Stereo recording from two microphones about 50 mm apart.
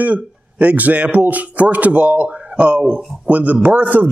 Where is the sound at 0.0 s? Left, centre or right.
Right.